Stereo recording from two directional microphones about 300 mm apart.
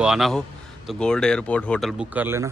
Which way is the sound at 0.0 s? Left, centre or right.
Centre.